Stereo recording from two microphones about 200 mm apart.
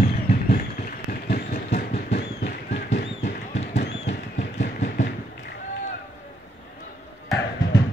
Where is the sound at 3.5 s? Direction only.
35° left (ahead or behind).